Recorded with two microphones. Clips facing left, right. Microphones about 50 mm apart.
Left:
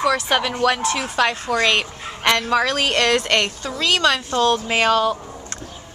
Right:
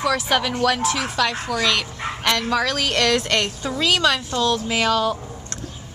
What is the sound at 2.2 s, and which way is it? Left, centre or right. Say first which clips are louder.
Speech: left 3 dB; left.